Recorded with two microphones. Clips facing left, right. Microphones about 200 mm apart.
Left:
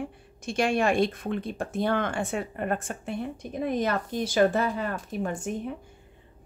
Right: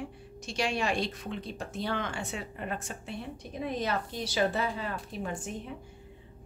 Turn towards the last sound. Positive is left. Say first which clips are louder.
# left 6 dB
turn(degrees=50)  # may be behind; listen again after turning